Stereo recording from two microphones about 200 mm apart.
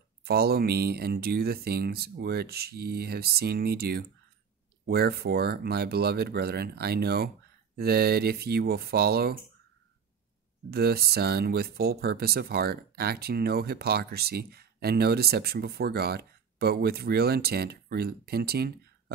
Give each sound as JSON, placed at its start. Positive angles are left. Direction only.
{"t": 0.2, "sound": "speech", "side_deg": -50}
{"t": 10.7, "sound": "speech", "side_deg": -50}